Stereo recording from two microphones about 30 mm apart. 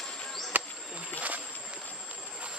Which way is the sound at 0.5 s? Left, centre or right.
Right.